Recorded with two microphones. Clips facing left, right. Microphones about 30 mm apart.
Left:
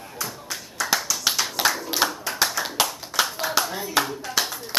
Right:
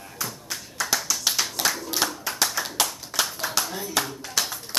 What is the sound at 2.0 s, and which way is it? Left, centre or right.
Clapping, centre.